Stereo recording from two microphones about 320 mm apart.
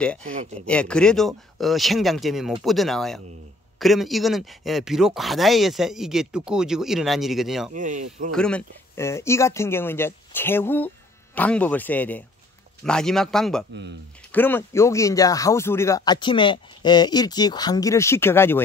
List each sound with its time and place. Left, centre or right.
0.7 s speech: centre
7.7 s speech: right
8.3 s speech: centre